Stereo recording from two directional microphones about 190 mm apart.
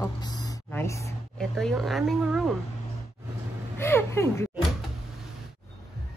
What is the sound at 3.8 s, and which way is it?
Speech, 15° left (ahead or behind).